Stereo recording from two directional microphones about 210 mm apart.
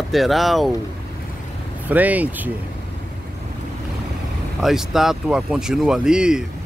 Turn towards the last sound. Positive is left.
turn(degrees=-5)  # may be behind; listen again after turning